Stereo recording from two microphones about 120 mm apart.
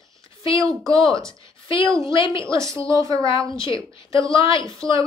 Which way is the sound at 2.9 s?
25° right (ahead or behind).